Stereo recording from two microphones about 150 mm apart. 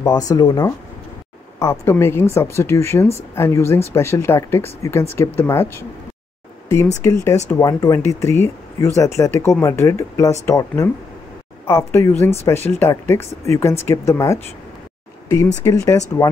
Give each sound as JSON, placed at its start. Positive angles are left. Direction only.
{"t": 0.0, "sound": "speech", "side_deg": 25}
{"t": 7.0, "sound": "speech", "side_deg": 20}